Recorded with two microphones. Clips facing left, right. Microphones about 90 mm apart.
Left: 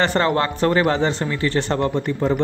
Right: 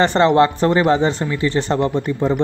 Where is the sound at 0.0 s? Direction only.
25° right (ahead or behind).